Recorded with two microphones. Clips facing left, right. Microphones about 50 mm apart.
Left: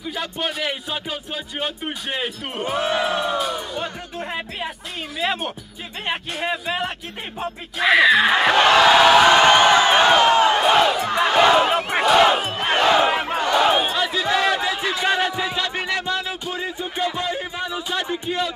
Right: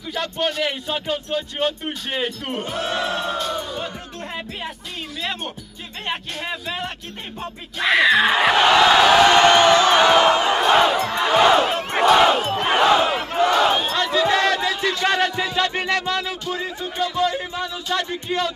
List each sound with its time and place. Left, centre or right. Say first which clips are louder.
0.0 s speech: right 2 dB; centre
8.8 s music: left 1 dB; centre
10.4 s crowd: left 1 dB; centre
11.1 s battle cry: even; centre
13.4 s a sound: right 2 dB; centre